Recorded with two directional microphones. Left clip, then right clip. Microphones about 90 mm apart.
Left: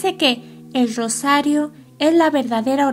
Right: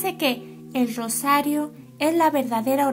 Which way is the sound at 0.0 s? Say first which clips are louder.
Left 6 dB; 25° left (ahead or behind).